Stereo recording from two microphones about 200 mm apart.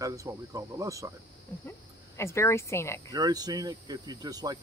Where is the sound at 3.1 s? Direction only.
20° right (ahead or behind).